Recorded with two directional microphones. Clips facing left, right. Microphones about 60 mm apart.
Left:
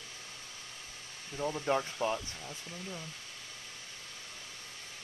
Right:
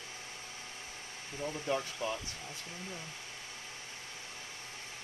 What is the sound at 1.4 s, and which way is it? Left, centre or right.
Speech, left.